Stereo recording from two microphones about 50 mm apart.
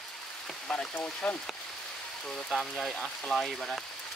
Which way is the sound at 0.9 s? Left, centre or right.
Left.